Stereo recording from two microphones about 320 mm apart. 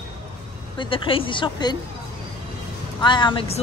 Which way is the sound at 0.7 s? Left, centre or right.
Centre.